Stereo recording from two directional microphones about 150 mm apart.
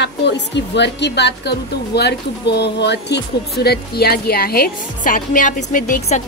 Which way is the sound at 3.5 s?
90° left.